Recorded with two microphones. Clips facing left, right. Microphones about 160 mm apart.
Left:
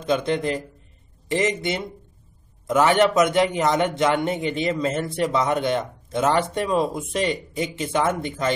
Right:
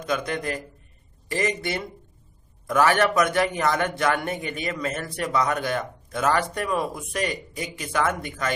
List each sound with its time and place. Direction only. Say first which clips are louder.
0.0 s a man's voice: left 5 dB; 25° left (ahead or behind)